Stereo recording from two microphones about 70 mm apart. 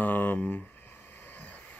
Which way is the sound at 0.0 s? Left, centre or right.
Left.